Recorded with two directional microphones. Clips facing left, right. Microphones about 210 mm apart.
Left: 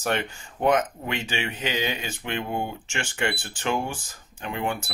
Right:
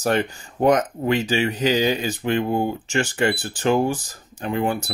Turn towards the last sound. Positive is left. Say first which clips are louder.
# right 6 dB
turn(degrees=-40)  # may be behind; listen again after turning